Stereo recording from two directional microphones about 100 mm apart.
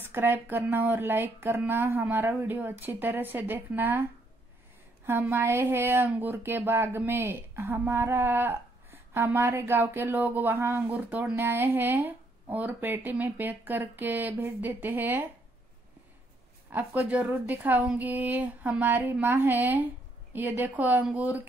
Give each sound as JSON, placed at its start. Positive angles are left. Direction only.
{"t": 0.0, "sound": "speech", "side_deg": -20}
{"t": 5.0, "sound": "speech", "side_deg": -20}
{"t": 16.7, "sound": "speech", "side_deg": -20}